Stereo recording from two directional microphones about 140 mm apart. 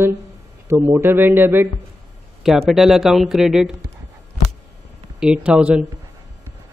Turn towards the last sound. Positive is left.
turn(degrees=-5)  # may be behind; listen again after turning